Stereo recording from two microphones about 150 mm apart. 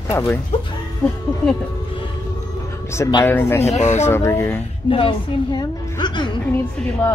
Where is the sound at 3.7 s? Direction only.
50° left (ahead or behind).